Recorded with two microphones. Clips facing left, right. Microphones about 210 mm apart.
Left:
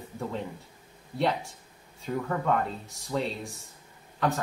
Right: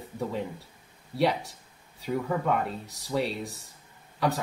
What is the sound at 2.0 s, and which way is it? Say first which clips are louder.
Speech: right 2 dB; 5° right (ahead or behind).